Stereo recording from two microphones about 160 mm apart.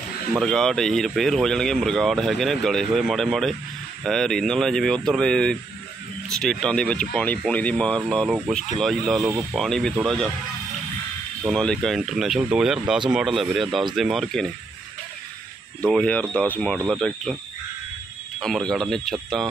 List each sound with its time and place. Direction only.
0.4 s speech: centre (ahead or behind)
11.5 s speech: 5° left (ahead or behind)
15.9 s speech: 10° left (ahead or behind)
18.4 s speech: 5° left (ahead or behind)